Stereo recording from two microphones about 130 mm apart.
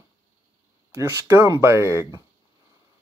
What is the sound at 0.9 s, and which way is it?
Speech, 20° right (ahead or behind).